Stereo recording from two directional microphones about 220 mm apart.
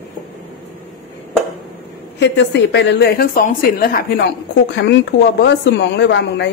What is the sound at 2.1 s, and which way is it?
A woman's voice, 50° left (ahead or behind).